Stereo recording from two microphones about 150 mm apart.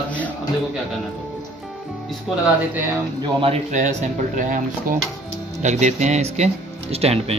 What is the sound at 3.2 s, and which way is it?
Speech, 35° right (ahead or behind).